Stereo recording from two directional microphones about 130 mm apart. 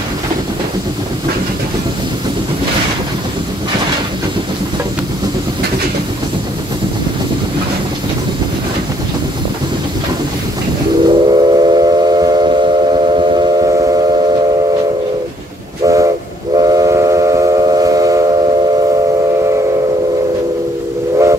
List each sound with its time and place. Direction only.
11.1 s steam whistle: 35° right (ahead or behind)
15.8 s train: 25° right (ahead or behind)